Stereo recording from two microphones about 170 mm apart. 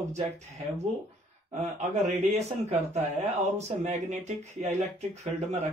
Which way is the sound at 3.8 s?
45° right (ahead or behind).